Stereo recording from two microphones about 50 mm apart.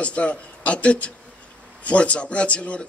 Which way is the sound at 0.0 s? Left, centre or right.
Left.